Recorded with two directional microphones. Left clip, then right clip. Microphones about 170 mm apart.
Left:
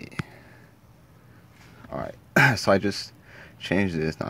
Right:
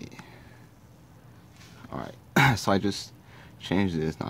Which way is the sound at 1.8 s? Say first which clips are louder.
Left 5 dB; 15° left (ahead or behind).